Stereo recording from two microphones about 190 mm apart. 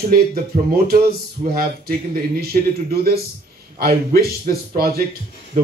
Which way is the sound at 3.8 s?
50° right (ahead or behind).